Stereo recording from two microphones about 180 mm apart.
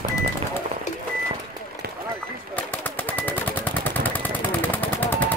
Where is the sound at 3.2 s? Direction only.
10° left (ahead or behind).